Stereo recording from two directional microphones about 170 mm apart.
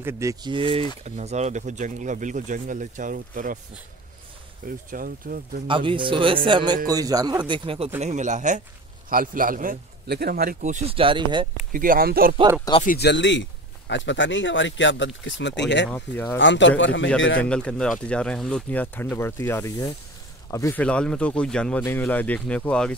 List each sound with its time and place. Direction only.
0.0 s speech: 20° right (ahead or behind)
1.0 s speech: 40° right (ahead or behind)
4.6 s a man's voice: 55° right (ahead or behind)
5.7 s speech: 30° right (ahead or behind)
8.0 s a man's voice: 45° right (ahead or behind); by 10.6 s 65° right (ahead or behind)
10.6 s speech: 40° right (ahead or behind)
11.7 s a man's voice: 55° right (ahead or behind)
12.8 s speech: 70° left (ahead or behind); by 15.6 s 90° left
15.9 s speech: 10° left (ahead or behind)
16.3 s speech: 90° left
17.4 s speech: 5° left (ahead or behind)
20.8 s speech: 5° left (ahead or behind)